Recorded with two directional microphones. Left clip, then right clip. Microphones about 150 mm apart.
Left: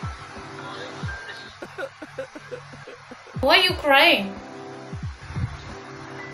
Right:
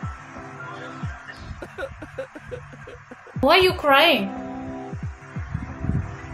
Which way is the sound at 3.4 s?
55° right (ahead or behind).